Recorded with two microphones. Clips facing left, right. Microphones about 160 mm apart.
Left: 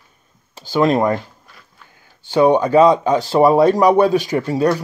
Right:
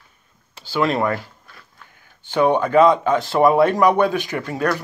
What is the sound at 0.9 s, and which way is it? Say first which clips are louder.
Speech: left 4 dB; 20° left (ahead or behind).